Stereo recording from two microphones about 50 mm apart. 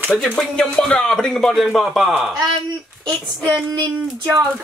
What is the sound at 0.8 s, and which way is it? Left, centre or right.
Speech, centre.